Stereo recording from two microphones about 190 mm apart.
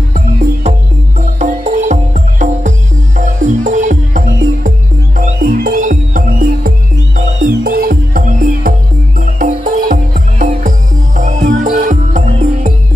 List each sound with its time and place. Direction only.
1.4 s music: 40° right (ahead or behind)